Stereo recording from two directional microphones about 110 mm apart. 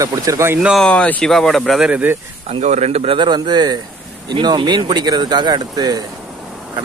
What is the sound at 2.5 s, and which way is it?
Speech, 90° right.